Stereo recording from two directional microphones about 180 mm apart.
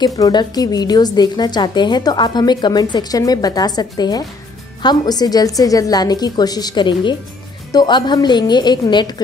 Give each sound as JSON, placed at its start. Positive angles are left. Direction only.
{"t": 0.0, "sound": "a woman's voice", "side_deg": 25}